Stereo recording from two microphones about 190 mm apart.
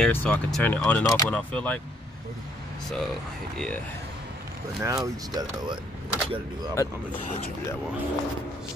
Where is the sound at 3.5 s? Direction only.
5° left (ahead or behind).